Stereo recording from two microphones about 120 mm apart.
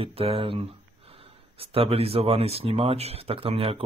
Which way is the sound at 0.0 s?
55° right (ahead or behind).